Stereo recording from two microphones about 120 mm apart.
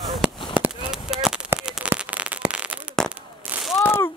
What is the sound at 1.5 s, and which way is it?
Rain on surface, 5° right (ahead or behind).